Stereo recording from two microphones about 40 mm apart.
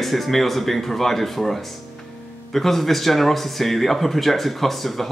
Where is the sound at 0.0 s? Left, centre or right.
Centre.